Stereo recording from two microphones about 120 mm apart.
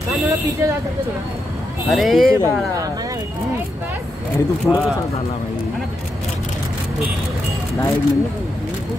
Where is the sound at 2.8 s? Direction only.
30° right (ahead or behind).